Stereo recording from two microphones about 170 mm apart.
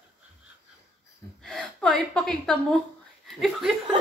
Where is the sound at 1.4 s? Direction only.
Centre (ahead or behind).